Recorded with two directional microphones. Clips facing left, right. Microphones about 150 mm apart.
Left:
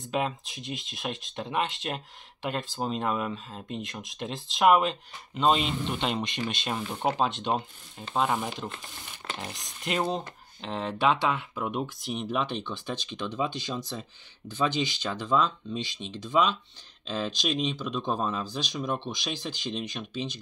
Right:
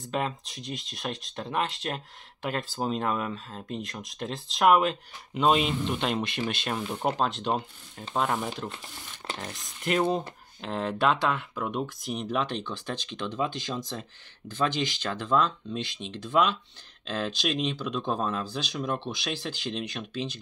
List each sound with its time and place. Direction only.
0.1 s speech: 5° left (ahead or behind)
9.8 s speech: centre (ahead or behind)
14.5 s speech: 10° left (ahead or behind)